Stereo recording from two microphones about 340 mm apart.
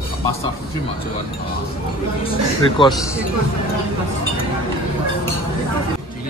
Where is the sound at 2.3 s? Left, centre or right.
Centre.